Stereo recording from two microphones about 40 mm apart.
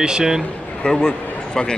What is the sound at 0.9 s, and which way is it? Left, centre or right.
Speech, centre.